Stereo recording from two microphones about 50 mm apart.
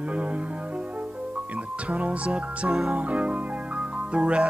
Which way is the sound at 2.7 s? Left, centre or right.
Centre.